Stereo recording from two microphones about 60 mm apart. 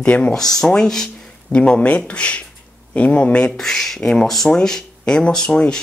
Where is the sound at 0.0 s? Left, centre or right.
Left.